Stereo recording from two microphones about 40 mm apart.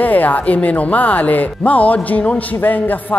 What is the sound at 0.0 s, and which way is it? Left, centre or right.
A man's voice, left.